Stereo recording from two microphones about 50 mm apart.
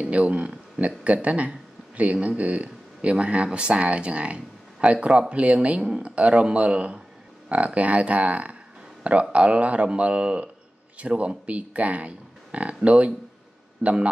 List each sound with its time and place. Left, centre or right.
0.0 s speech: right
13.8 s a man's voice: right